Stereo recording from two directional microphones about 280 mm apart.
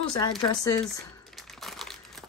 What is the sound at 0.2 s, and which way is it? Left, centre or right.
Speech, centre.